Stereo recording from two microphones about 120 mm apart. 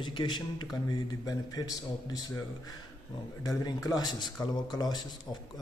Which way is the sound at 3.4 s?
30° left (ahead or behind).